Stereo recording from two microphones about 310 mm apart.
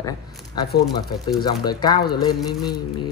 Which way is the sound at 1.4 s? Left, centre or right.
Centre.